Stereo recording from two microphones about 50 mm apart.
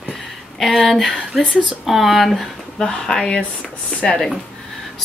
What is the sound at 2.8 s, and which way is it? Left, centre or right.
Speech, centre.